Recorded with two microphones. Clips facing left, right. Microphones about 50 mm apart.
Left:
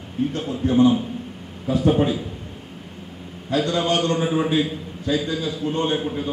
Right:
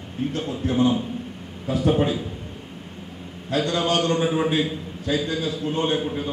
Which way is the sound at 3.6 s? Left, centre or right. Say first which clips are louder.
Even; centre.